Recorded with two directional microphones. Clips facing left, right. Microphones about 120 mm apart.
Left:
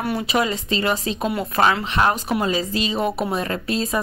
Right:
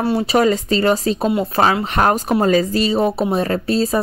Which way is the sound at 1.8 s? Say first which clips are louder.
Right 4 dB; 45° right (ahead or behind).